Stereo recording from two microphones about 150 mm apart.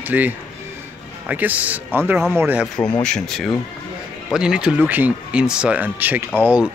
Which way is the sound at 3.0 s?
5° left (ahead or behind).